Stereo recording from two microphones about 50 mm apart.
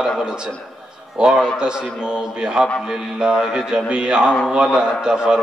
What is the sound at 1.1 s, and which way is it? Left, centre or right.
A man's voice, centre.